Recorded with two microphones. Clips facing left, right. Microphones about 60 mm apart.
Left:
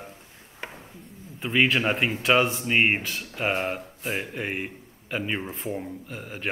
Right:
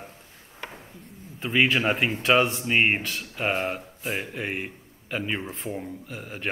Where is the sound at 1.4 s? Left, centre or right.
Centre.